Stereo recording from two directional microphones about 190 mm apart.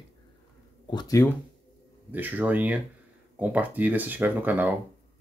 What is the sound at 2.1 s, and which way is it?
Speech, 10° right (ahead or behind).